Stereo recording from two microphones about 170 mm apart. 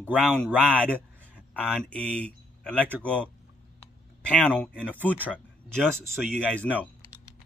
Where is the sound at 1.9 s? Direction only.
5° left (ahead or behind).